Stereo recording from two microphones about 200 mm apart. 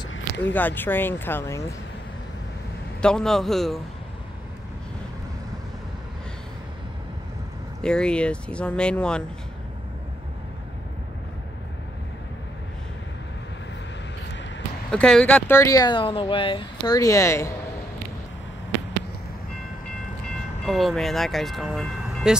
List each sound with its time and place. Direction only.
0.4 s speech: 10° left (ahead or behind)
3.0 s speech: 5° left (ahead or behind)
7.8 s speech: 5° left (ahead or behind)
14.9 s speech: 5° left (ahead or behind)
20.6 s speech: centre (ahead or behind)